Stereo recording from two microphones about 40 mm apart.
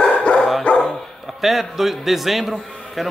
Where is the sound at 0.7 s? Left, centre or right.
Left.